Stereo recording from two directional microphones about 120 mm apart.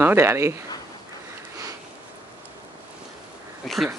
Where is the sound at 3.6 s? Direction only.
Centre (ahead or behind).